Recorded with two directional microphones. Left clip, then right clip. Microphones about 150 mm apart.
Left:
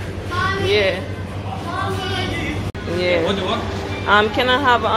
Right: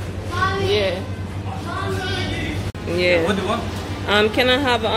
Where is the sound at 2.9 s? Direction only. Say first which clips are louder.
Right 1 dB; 20° right (ahead or behind).